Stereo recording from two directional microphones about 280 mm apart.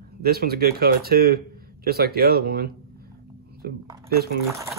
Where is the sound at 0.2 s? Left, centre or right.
Right.